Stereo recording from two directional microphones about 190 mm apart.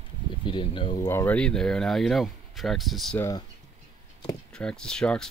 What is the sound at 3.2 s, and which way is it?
Speech, 15° left (ahead or behind).